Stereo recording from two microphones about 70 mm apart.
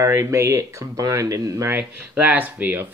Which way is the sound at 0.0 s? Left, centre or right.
Right.